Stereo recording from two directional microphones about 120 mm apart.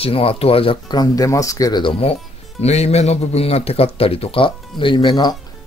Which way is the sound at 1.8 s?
50° left (ahead or behind).